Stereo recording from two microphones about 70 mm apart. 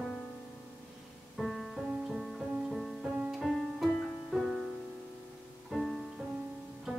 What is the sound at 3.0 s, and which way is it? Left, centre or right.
Music, right.